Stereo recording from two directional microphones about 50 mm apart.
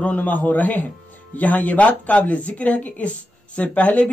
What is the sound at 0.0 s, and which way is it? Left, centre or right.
Speech, left.